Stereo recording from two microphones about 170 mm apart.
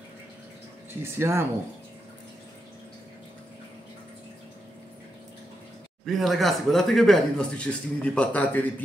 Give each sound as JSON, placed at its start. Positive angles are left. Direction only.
{"t": 1.0, "sound": "speech", "side_deg": -15}
{"t": 6.0, "sound": "speech", "side_deg": 0}